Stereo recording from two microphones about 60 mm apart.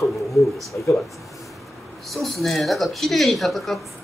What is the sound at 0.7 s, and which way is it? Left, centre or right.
Speech, left.